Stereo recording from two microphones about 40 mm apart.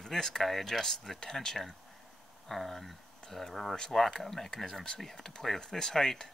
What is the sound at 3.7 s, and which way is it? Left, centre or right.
Speech, centre.